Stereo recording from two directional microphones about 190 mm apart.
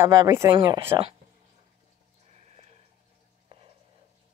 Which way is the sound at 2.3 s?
35° right (ahead or behind).